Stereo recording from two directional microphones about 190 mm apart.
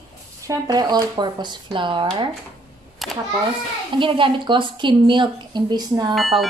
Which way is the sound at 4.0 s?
25° right (ahead or behind).